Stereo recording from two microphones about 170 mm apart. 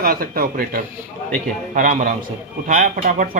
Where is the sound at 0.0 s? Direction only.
60° right (ahead or behind).